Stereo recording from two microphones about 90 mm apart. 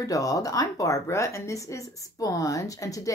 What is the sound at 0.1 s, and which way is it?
Speech, 40° left (ahead or behind).